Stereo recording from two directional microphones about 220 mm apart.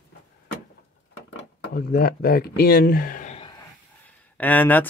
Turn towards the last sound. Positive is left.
turn(degrees=10)  # may be behind; listen again after turning